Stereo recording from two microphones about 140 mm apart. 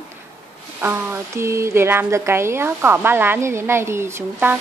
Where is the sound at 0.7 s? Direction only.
15° right (ahead or behind).